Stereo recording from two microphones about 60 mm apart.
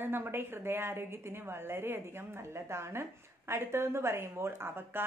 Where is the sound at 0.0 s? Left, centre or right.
Right.